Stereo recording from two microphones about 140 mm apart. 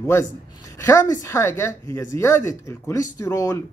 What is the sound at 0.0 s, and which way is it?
Speech, 20° left (ahead or behind).